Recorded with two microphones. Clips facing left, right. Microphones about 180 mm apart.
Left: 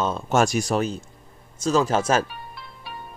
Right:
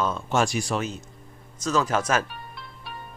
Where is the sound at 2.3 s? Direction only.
Centre (ahead or behind).